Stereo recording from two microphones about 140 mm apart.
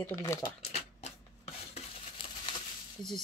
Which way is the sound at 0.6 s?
50° left (ahead or behind).